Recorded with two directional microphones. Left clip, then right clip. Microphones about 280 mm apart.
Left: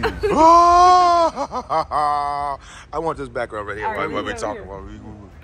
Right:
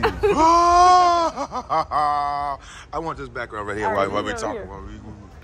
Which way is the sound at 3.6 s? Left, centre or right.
Centre.